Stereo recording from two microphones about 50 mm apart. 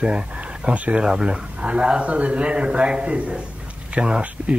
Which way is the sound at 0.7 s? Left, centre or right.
Right.